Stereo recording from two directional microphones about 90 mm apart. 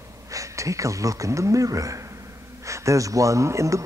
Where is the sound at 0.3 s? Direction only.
35° right (ahead or behind).